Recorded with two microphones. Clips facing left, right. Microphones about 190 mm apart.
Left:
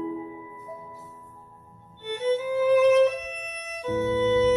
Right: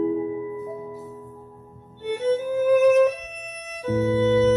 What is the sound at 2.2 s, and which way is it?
Music, 45° right (ahead or behind).